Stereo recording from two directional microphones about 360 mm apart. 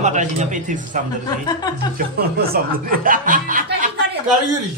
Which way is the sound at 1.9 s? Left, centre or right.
Right.